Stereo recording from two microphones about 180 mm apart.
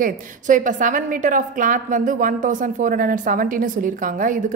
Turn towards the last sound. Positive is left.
turn(degrees=-45)  # may be behind; listen again after turning